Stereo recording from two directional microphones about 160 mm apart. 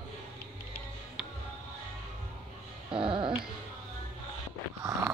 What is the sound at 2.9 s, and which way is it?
Music, 30° right (ahead or behind).